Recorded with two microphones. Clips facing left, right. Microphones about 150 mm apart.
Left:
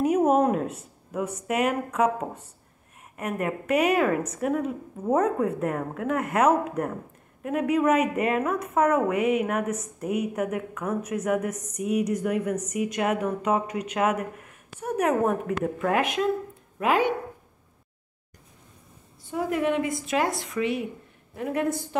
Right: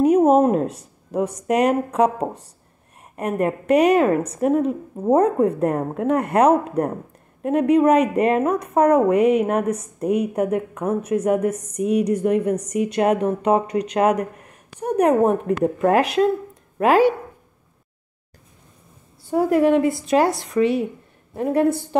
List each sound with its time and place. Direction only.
0.0 s a sound: 30° right (ahead or behind)
0.5 s speech: 35° right (ahead or behind)
19.3 s speech: 35° right (ahead or behind)